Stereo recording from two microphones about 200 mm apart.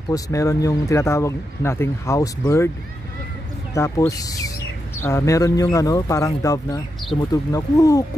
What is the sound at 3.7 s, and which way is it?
Speech, 15° left (ahead or behind).